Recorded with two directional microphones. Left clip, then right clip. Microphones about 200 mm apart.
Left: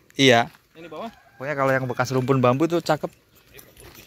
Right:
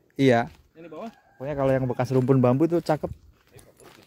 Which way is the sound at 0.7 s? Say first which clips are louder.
Left 4 dB; 30° left (ahead or behind).